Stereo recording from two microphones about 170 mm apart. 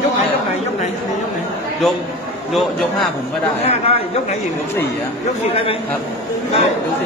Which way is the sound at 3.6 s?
40° left (ahead or behind).